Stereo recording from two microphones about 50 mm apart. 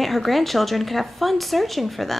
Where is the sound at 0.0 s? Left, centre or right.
Centre.